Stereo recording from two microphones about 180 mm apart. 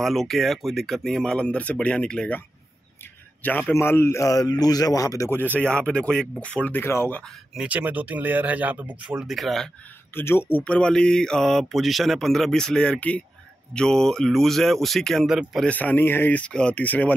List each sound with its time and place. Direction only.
0.0 s speech: centre (ahead or behind)
3.4 s a man's voice: 10° left (ahead or behind)
7.5 s speech: 10° right (ahead or behind)
10.1 s speech: 10° left (ahead or behind)